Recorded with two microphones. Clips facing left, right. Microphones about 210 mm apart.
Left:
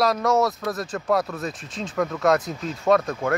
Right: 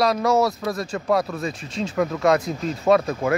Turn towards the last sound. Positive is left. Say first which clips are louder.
# right 2 dB
turn(degrees=-5)  # may be behind; listen again after turning